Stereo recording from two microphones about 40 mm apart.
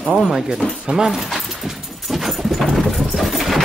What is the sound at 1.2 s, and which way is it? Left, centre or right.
Dog, centre.